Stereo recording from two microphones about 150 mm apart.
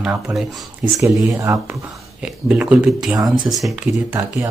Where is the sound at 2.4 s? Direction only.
10° right (ahead or behind).